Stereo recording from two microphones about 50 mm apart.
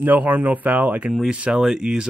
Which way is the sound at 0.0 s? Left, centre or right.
Right.